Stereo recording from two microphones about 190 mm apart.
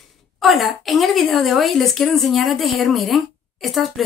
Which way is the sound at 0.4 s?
Centre (ahead or behind).